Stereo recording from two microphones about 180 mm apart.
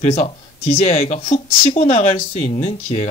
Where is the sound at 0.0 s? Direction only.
35° left (ahead or behind).